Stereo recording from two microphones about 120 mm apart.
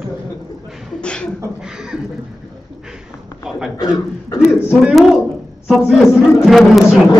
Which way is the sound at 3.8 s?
30° left (ahead or behind).